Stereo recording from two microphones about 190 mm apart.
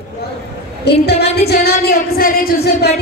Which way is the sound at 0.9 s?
60° left (ahead or behind).